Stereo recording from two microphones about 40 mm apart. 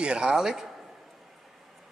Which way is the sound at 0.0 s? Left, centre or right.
Right.